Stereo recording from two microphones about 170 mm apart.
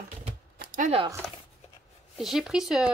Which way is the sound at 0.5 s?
50° right (ahead or behind).